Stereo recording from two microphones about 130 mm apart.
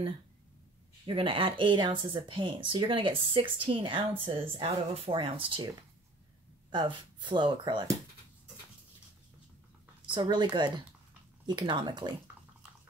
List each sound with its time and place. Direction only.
1.0 s speech: 45° right (ahead or behind)
6.7 s speech: 35° right (ahead or behind)
10.1 s speech: 35° right (ahead or behind)